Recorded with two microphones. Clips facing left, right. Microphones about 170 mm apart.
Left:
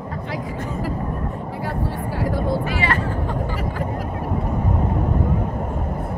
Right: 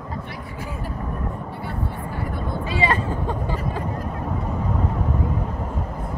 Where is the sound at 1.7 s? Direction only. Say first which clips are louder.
Left 5 dB; 90° left.